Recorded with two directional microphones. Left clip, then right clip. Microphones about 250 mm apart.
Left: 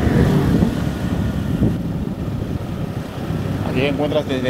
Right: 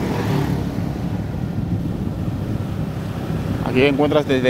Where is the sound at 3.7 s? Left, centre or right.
Right.